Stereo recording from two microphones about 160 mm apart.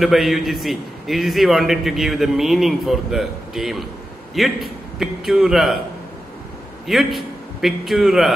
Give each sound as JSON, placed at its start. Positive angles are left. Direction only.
{"t": 0.0, "sound": "a man's voice", "side_deg": 0}
{"t": 6.9, "sound": "a man's voice", "side_deg": 0}